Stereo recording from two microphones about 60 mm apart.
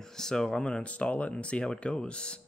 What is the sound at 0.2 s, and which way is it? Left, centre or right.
Speech, centre.